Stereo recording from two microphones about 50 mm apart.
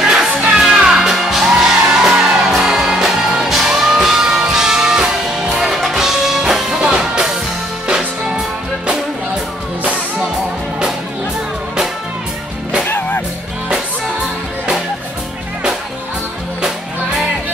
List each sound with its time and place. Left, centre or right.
0.0 s music: centre
12.8 s music: left